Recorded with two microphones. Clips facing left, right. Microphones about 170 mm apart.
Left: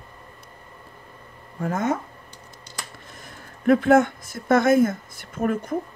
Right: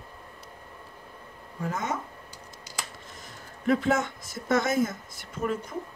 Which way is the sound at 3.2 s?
55° left (ahead or behind).